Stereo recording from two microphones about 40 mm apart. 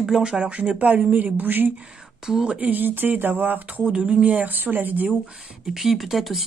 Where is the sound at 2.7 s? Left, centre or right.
Right.